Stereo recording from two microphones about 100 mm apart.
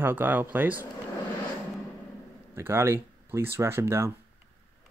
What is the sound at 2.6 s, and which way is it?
Speech, 25° right (ahead or behind).